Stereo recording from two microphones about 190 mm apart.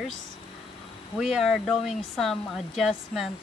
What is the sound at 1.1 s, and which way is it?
Speech, centre (ahead or behind).